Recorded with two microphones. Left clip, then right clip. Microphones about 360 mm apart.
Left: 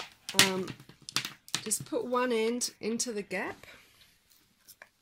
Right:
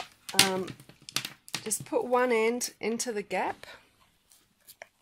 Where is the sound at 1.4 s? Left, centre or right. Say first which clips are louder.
Even; centre.